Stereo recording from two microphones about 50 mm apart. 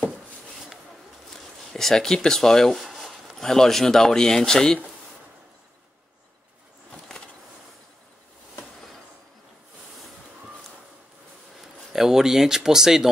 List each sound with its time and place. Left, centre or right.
1.3 s speech: centre
2.8 s speech: centre
6.9 s a sound: centre
11.9 s speech: centre